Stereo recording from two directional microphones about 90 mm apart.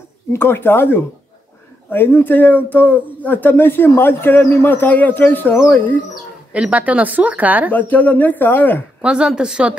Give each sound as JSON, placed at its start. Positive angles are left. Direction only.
{"t": 0.3, "sound": "speech", "side_deg": 25}
{"t": 6.5, "sound": "speech", "side_deg": -15}
{"t": 7.7, "sound": "speech", "side_deg": 15}
{"t": 9.0, "sound": "speech", "side_deg": -10}